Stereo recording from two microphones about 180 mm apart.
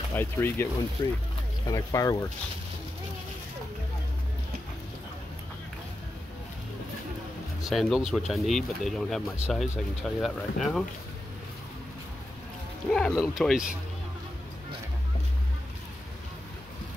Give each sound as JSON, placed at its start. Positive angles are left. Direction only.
{"t": 0.1, "sound": "speech", "side_deg": 10}
{"t": 1.0, "sound": "speech", "side_deg": 25}
{"t": 7.6, "sound": "speech", "side_deg": 0}
{"t": 12.9, "sound": "speech", "side_deg": 0}